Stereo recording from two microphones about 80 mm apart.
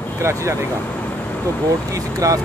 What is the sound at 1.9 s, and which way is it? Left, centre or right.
Speech, right.